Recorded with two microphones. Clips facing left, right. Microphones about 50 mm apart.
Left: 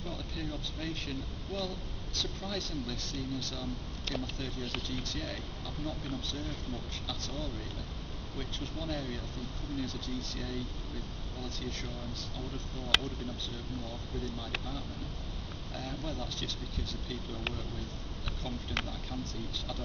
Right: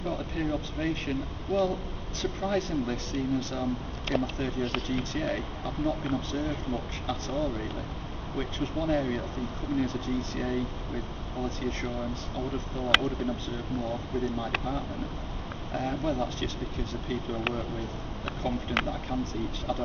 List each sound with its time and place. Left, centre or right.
0.0 s speech: right
15.7 s speech: right